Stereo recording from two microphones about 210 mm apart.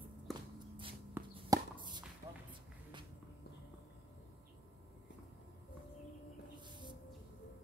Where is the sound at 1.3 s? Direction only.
20° right (ahead or behind).